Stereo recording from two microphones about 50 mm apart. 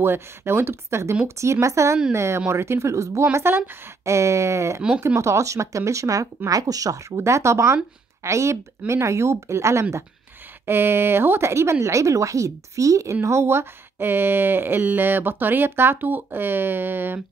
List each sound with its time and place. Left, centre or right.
0.0 s speech: right
1.2 s speech: right
2.1 s speech: right
4.0 s speech: right
7.1 s speech: right
10.7 s speech: right